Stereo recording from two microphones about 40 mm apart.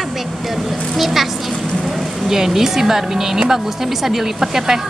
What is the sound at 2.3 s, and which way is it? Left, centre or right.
A woman's voice, centre.